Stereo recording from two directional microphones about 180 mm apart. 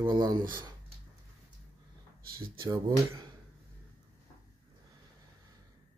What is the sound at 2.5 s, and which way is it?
Speech, 20° right (ahead or behind).